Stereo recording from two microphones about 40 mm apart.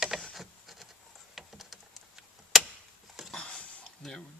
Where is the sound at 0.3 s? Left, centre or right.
Centre.